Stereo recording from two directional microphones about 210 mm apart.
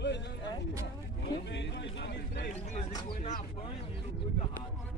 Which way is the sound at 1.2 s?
55° left (ahead or behind).